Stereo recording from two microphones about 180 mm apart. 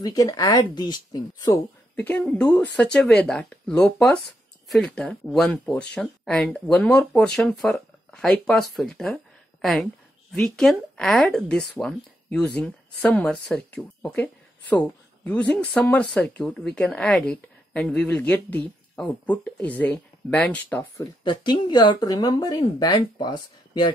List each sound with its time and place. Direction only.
0.0 s speech: 20° left (ahead or behind)
2.0 s speech: 10° left (ahead or behind)
21.2 s speech: 25° left (ahead or behind)